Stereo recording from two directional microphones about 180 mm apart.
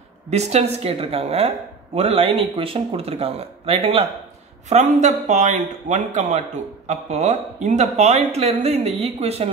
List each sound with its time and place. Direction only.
0.3 s speech: 35° right (ahead or behind)